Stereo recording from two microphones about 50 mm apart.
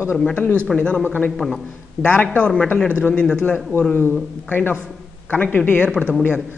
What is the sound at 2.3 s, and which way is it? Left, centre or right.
Speech, left.